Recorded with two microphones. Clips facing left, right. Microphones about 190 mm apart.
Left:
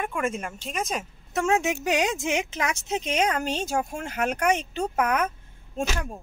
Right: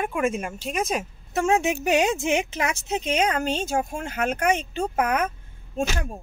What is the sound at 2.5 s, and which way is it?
Speech, 5° right (ahead or behind).